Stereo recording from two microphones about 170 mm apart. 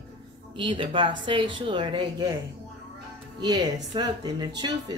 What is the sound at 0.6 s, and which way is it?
Speech, 30° right (ahead or behind).